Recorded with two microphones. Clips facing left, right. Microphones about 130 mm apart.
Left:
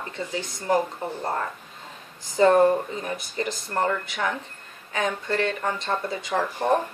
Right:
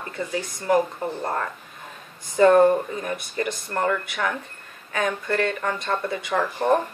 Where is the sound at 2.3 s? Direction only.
25° left (ahead or behind).